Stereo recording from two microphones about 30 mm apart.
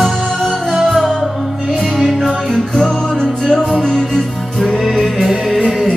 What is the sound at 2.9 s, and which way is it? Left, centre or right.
Music, left.